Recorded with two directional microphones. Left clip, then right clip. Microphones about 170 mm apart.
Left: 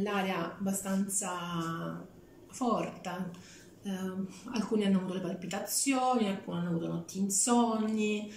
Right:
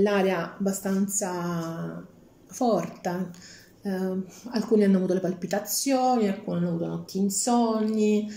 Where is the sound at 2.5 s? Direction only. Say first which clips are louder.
Right 7 dB; 35° right (ahead or behind).